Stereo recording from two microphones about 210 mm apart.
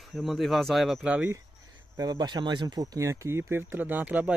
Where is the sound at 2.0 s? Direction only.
20° right (ahead or behind).